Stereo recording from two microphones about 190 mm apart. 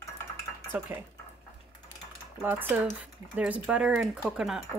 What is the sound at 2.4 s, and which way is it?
Speech, 10° right (ahead or behind).